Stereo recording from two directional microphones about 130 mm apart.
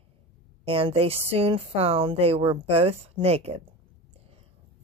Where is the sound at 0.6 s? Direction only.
45° right (ahead or behind).